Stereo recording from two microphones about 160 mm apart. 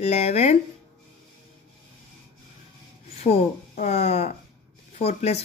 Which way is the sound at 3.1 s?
40° left (ahead or behind).